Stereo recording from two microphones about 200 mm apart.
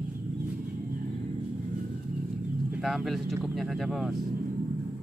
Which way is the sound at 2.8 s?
Centre (ahead or behind).